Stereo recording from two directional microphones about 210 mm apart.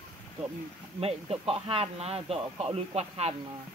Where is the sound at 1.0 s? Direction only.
30° right (ahead or behind).